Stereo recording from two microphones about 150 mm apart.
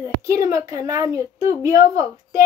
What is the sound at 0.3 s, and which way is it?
A woman's voice, 20° right (ahead or behind).